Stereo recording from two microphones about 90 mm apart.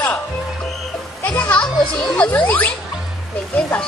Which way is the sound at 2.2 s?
15° left (ahead or behind).